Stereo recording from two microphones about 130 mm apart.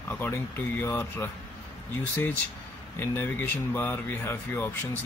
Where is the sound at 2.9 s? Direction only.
15° left (ahead or behind).